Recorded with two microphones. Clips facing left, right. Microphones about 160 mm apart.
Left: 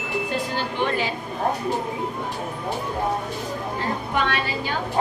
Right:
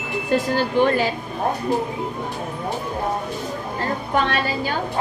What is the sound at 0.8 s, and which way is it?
Speech, 45° right (ahead or behind).